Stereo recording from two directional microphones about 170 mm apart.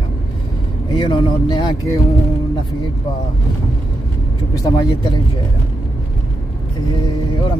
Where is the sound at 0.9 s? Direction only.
25° left (ahead or behind).